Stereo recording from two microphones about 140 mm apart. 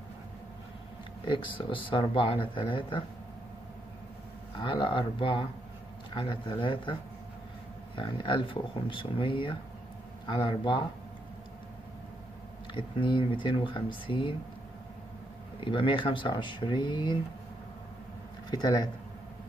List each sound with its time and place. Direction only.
1.2 s speech: 35° left (ahead or behind)
4.6 s speech: 35° left (ahead or behind)
12.7 s speech: 35° left (ahead or behind)
15.6 s speech: 35° left (ahead or behind)
18.5 s speech: 30° left (ahead or behind)